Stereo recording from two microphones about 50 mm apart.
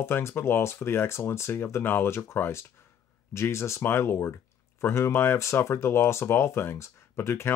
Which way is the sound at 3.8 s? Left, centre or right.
Left.